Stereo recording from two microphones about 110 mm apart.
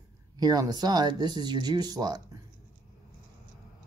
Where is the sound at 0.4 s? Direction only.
35° right (ahead or behind).